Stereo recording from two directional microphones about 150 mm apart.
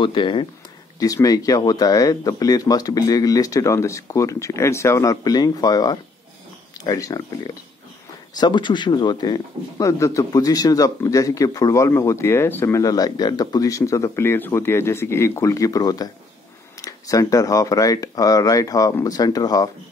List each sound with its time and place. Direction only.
0.0 s speech: 35° left (ahead or behind)
0.9 s speech: 20° left (ahead or behind)
8.4 s speech: 30° left (ahead or behind)